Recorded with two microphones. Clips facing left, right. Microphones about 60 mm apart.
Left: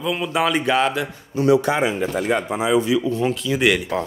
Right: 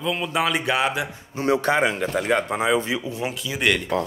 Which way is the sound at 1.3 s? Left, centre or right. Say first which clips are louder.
Left 3 dB; right.